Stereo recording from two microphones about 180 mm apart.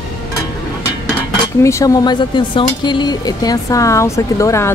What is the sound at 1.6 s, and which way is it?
Speech, 15° left (ahead or behind).